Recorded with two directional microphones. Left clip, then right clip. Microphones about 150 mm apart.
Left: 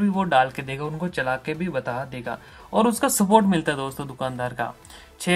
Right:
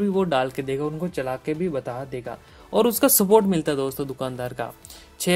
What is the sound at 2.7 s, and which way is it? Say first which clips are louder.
Speech: right 2 dB; 40° right (ahead or behind).